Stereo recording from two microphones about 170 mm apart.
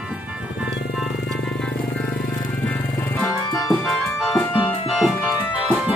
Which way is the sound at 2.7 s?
10° left (ahead or behind).